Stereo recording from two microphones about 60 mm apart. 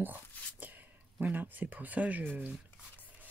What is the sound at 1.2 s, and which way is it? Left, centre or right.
Speech, right.